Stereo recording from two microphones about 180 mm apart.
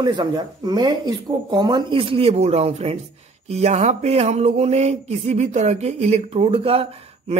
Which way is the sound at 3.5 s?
35° right (ahead or behind).